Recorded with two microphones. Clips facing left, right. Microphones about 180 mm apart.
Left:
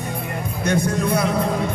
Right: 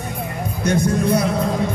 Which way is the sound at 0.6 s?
55° left (ahead or behind).